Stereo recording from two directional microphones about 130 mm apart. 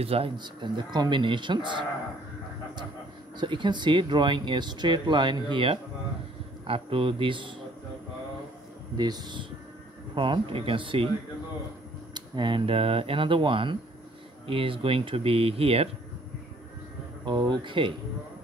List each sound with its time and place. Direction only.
0.0 s speech: 45° right (ahead or behind)
3.3 s speech: 35° right (ahead or behind)
8.9 s speech: 35° right (ahead or behind)
12.1 s speech: 35° right (ahead or behind)
17.2 s speech: 35° right (ahead or behind)